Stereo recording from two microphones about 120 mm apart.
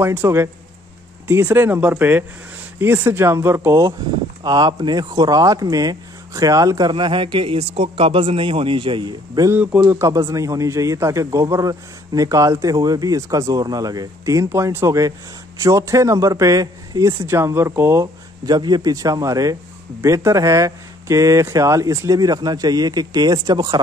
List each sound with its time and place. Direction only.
0.0 s a man's voice: 20° right (ahead or behind)
4.4 s speech: 35° right (ahead or behind)
9.5 s speech: 15° right (ahead or behind)
9.8 s a man's voice: 25° right (ahead or behind)